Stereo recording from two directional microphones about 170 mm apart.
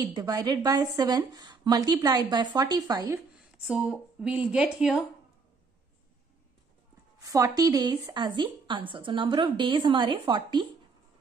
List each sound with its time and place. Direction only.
0.0 s a woman's voice: 20° right (ahead or behind)
3.3 s a woman's voice: 5° right (ahead or behind)
7.2 s a woman's voice: 20° right (ahead or behind)